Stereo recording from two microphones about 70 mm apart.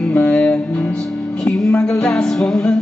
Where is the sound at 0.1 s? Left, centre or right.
Centre.